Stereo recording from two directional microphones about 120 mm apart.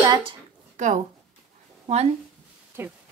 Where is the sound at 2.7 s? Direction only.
20° right (ahead or behind).